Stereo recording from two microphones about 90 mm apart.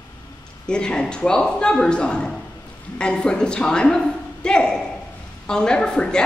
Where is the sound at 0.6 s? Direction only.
10° left (ahead or behind).